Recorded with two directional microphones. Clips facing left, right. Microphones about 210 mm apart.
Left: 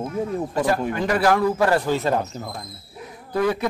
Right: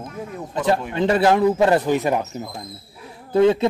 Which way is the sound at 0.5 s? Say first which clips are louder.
Right 3 dB; 20° right (ahead or behind).